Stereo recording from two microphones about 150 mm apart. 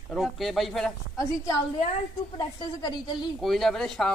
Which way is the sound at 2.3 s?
30° left (ahead or behind).